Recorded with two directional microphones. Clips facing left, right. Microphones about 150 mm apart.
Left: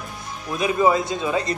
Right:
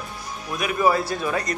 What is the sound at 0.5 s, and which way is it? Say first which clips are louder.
Speech: left 2 dB; 25° left (ahead or behind).